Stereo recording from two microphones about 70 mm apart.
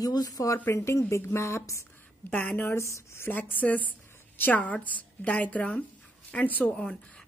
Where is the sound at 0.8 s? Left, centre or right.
Left.